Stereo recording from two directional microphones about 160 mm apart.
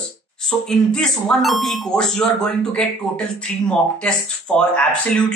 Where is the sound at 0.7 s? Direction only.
5° left (ahead or behind).